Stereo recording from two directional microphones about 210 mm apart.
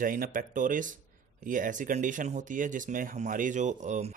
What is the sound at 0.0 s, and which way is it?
Speech, 40° right (ahead or behind).